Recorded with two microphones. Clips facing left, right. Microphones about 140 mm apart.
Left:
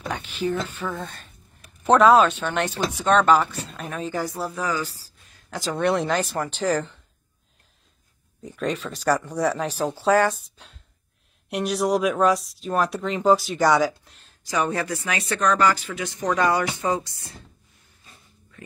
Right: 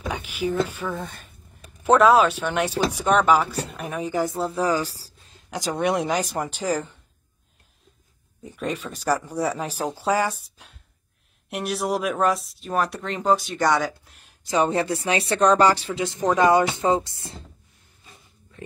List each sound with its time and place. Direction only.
0.1 s speech: 10° right (ahead or behind); by 5.4 s 35° right (ahead or behind)
5.5 s speech: 15° right (ahead or behind)
8.4 s speech: 5° right (ahead or behind)
11.5 s speech: centre (ahead or behind)
14.5 s speech: 25° right (ahead or behind)